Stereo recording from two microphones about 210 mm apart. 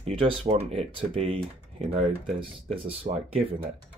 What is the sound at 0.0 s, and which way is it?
Speech, 25° right (ahead or behind).